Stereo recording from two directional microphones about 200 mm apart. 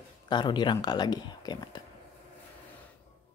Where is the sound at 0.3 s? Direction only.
20° left (ahead or behind).